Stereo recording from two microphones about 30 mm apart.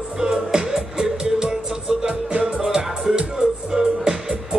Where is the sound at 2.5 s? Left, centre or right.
Centre.